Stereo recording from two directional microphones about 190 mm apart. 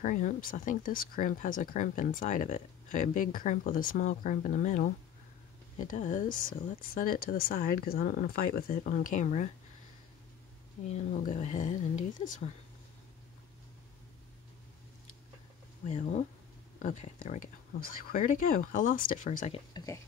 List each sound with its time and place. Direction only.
0.0 s speech: 40° left (ahead or behind)
10.9 s speech: 40° left (ahead or behind)
15.9 s speech: 35° left (ahead or behind)
17.7 s speech: 50° left (ahead or behind)
19.7 s speech: 20° left (ahead or behind)